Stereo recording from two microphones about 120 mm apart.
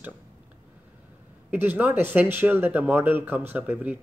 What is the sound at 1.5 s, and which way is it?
Speech, 15° right (ahead or behind).